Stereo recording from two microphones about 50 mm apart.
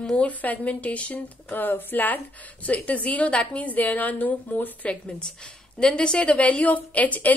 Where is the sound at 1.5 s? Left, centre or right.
Left.